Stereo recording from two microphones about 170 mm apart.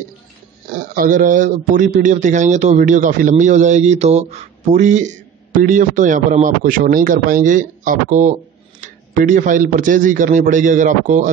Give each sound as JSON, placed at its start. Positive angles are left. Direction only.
{"t": 0.7, "sound": "a man's voice", "side_deg": -60}